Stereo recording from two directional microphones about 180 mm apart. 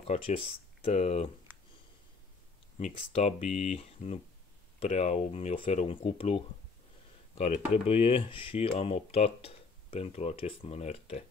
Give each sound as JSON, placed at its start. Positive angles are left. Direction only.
{"t": 0.0, "sound": "speech", "side_deg": 30}
{"t": 2.8, "sound": "speech", "side_deg": 35}